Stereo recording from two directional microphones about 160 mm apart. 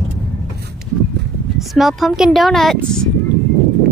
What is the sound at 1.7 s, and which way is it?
Speech, centre (ahead or behind).